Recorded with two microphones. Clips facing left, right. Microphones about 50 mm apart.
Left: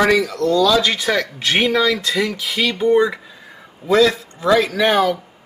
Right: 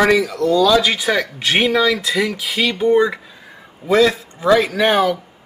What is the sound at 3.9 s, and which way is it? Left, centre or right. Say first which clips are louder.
A man's voice: even; right.